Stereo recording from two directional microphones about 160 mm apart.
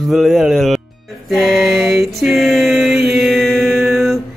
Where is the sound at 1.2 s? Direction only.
Centre (ahead or behind).